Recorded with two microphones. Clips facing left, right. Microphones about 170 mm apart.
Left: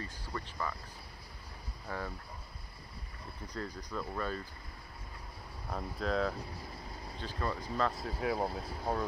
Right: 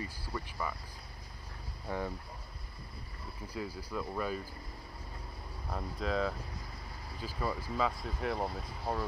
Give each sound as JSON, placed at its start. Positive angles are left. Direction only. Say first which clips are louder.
{"t": 0.0, "sound": "speech", "louder": "right 1 dB", "side_deg": -10}
{"t": 1.9, "sound": "speech", "louder": "right 3 dB", "side_deg": -15}
{"t": 3.4, "sound": "speech", "louder": "right 1 dB", "side_deg": -5}
{"t": 5.7, "sound": "speech", "louder": "even", "side_deg": 0}